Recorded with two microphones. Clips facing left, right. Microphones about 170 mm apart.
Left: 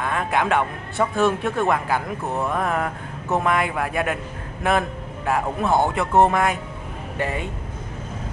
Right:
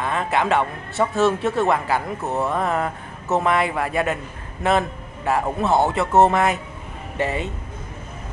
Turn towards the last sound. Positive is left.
turn(degrees=0)  # may be behind; listen again after turning